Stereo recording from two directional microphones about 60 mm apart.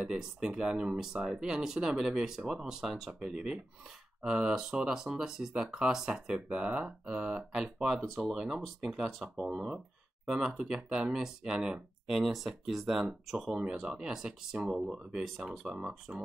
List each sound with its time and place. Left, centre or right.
0.0 s speech: centre
3.1 s speech: centre
12.1 s speech: centre
15.6 s speech: centre